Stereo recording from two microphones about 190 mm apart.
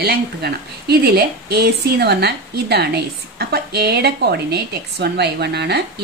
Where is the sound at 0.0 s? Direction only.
55° right (ahead or behind).